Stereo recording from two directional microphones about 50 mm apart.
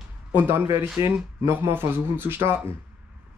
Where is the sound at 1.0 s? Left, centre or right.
Right.